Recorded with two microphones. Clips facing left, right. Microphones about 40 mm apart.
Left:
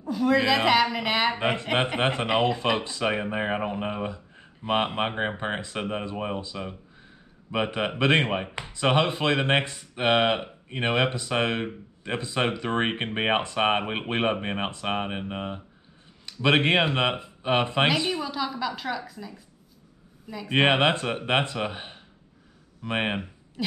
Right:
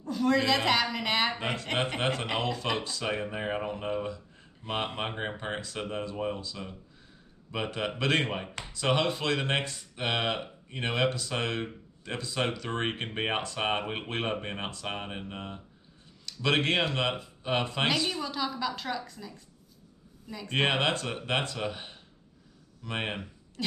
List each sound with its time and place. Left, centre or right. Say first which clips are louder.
0.0 s a woman's voice: left 4 dB; centre
1.3 s speech: left 6 dB; left
18.2 s a woman's voice: left 3 dB; centre; by 23.3 s left